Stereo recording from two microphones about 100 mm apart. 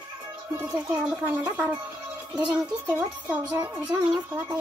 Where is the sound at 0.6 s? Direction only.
20° right (ahead or behind).